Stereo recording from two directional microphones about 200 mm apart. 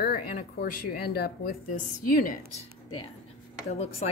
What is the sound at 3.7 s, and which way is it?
Speech, 30° left (ahead or behind).